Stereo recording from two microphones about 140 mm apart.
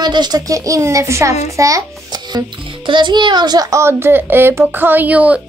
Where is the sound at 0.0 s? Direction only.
30° right (ahead or behind).